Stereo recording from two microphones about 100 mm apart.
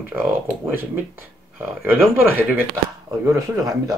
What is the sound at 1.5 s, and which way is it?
Speech, 20° right (ahead or behind).